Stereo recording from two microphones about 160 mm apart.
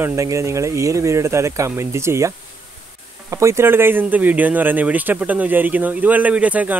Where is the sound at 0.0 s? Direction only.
20° right (ahead or behind).